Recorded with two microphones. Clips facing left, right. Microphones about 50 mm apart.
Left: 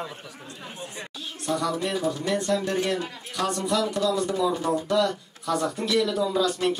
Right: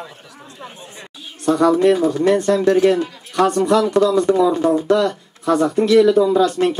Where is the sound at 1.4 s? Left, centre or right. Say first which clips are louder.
Right 13 dB; right.